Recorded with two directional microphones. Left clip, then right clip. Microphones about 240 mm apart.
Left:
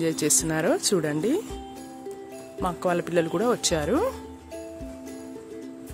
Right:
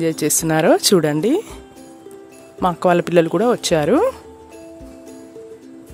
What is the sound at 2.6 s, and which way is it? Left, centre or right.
Speech, right.